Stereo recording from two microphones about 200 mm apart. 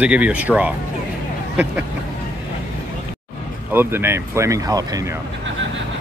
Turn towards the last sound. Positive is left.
turn(degrees=-20)  # may be behind; listen again after turning